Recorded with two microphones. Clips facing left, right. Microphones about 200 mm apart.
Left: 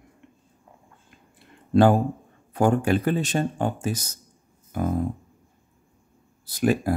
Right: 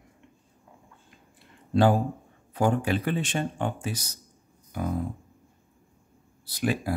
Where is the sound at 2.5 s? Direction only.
50° left (ahead or behind).